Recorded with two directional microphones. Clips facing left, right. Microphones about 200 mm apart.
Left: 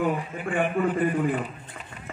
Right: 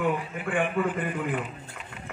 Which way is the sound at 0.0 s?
35° left (ahead or behind).